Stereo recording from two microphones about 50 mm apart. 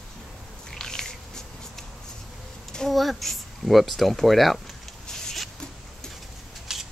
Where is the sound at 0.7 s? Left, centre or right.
Centre.